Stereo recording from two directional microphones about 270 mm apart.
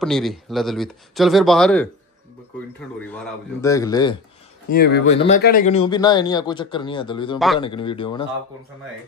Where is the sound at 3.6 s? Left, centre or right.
Centre.